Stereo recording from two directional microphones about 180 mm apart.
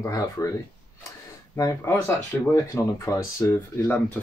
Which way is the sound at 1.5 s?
15° left (ahead or behind).